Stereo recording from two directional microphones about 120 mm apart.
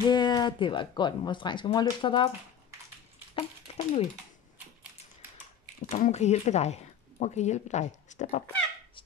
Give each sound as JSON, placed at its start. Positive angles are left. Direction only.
{"t": 0.1, "sound": "speech", "side_deg": 35}
{"t": 3.3, "sound": "a sound", "side_deg": 55}
{"t": 5.9, "sound": "speech", "side_deg": 80}